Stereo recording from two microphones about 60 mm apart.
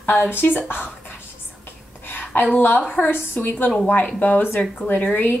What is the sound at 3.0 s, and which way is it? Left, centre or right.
A woman's voice, left.